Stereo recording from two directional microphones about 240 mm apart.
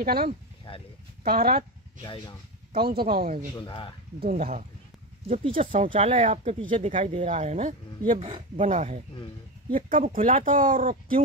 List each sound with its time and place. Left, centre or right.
0.0 s speech: right
2.7 s speech: right
3.5 s speech: centre
4.2 s speech: right